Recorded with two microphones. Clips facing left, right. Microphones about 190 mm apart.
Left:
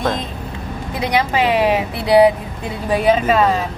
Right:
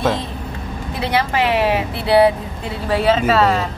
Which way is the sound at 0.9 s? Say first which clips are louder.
Left 1 dB; 15° left (ahead or behind).